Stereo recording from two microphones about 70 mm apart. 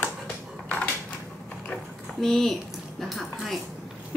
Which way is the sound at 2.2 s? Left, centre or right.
Centre.